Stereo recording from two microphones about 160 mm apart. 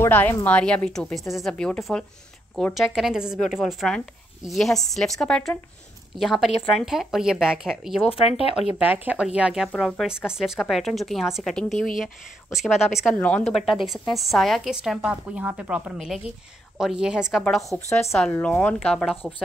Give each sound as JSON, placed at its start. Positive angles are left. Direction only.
{"t": 0.0, "sound": "a woman's voice", "side_deg": 15}
{"t": 8.1, "sound": "speech", "side_deg": 35}
{"t": 8.7, "sound": "a woman's voice", "side_deg": -10}